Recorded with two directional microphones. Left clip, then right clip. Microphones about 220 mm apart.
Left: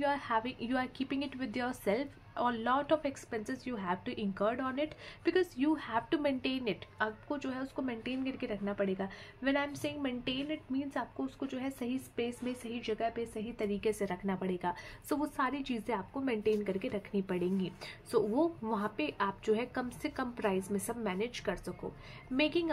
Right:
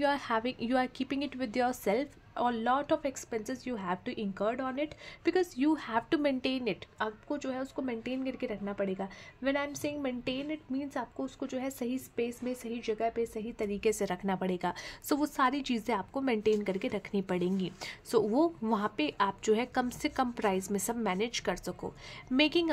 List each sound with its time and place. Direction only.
0.0 s a woman's voice: 35° right (ahead or behind)